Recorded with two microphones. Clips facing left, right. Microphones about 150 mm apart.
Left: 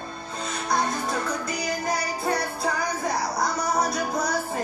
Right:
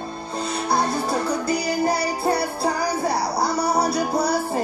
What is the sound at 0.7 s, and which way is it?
Music, 30° right (ahead or behind).